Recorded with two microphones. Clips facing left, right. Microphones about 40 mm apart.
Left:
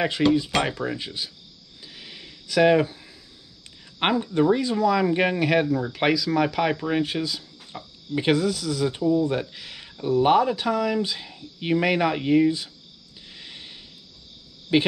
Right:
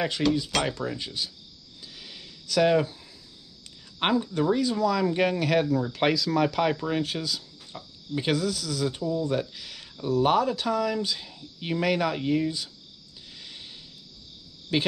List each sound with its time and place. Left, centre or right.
0.0 s speech: left
1.8 s a sound: left
4.0 s speech: left
6.0 s speech: centre
13.3 s a sound: left
14.7 s speech: left